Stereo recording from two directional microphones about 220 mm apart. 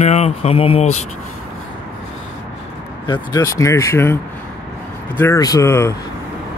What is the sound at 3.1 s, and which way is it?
Speech, 15° left (ahead or behind).